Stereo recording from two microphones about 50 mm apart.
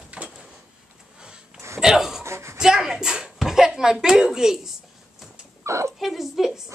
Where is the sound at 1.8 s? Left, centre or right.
Centre.